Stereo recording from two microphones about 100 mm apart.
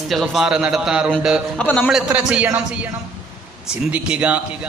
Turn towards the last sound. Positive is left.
turn(degrees=-10)  # may be behind; listen again after turning